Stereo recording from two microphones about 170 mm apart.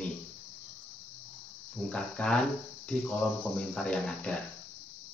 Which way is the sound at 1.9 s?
5° left (ahead or behind).